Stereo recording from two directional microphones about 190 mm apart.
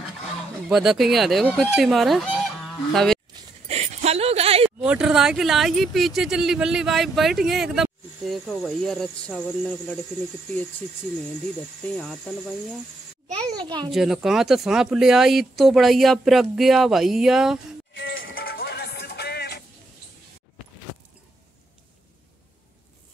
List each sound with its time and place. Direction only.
0.7 s speech: centre (ahead or behind)
3.6 s a sound: 35° right (ahead or behind)
4.6 s speech: 5° right (ahead or behind)
11.8 s speech: 5° left (ahead or behind)
13.5 s a child's voice: 25° right (ahead or behind)
13.9 s speech: centre (ahead or behind)
18.3 s music: 55° left (ahead or behind)